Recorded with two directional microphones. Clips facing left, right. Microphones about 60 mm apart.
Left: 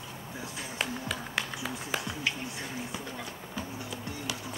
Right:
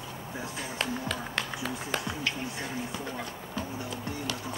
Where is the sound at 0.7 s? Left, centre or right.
Centre.